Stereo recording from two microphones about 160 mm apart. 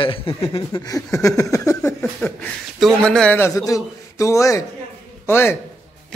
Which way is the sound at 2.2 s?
15° left (ahead or behind).